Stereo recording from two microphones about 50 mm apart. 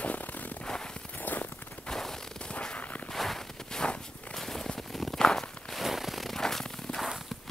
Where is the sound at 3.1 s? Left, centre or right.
Centre.